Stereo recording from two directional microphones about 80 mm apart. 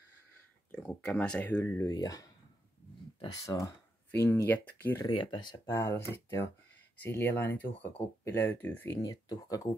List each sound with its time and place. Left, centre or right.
0.7 s speech: centre
1.6 s speech: left
3.4 s speech: left
4.1 s speech: left
5.1 s speech: left
5.7 s speech: left
8.9 s speech: left